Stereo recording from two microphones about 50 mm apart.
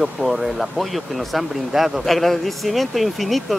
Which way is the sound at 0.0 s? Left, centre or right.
Centre.